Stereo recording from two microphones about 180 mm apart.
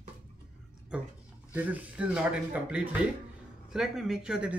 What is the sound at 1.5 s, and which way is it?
Speech, 10° right (ahead or behind).